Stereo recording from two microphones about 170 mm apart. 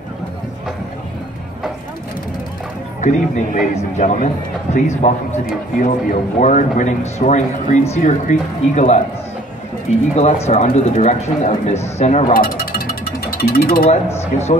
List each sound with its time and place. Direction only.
3.0 s speech: 45° left (ahead or behind)
10.1 s speech: 40° left (ahead or behind)
12.4 s music: 60° left (ahead or behind)
13.4 s speech: 60° left (ahead or behind)
14.3 s speech: 45° left (ahead or behind)